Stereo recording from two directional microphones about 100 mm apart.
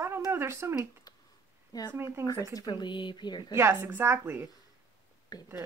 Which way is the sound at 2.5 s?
45° left (ahead or behind).